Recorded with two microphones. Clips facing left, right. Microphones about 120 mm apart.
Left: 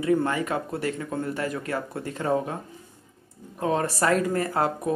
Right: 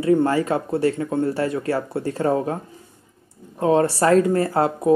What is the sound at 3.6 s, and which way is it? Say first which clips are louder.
Speech: right 7 dB; 30° right (ahead or behind).